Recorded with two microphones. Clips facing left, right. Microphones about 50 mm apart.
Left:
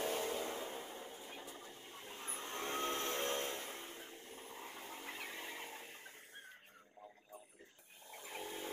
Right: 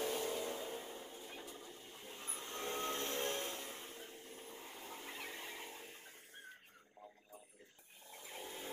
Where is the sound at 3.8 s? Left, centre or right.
Left.